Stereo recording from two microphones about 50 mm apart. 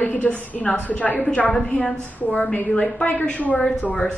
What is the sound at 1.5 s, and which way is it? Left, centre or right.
Speech, left.